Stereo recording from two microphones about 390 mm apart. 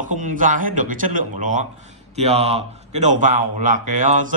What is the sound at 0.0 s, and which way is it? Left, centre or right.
A man's voice, centre.